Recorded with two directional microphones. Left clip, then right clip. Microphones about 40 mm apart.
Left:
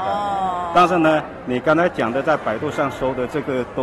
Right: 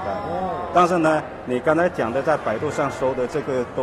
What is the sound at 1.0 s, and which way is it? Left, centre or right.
Speech, right.